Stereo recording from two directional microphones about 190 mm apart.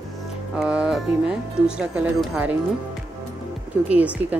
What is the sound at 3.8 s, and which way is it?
Speech, 5° right (ahead or behind).